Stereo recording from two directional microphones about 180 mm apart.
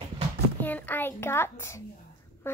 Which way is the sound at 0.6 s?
10° left (ahead or behind).